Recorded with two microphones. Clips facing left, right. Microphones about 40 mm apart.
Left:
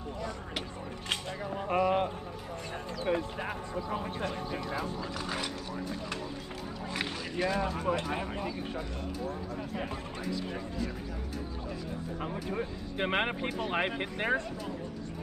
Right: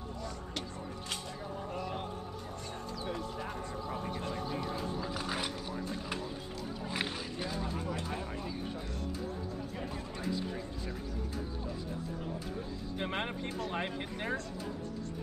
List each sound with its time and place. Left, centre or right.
1.0 s a sound: left
3.1 s speech: left
7.3 s speech: left
9.8 s speech: left
12.2 s speech: left
12.9 s speech: left